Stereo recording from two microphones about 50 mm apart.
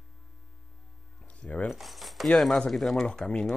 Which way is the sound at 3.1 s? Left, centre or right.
Centre.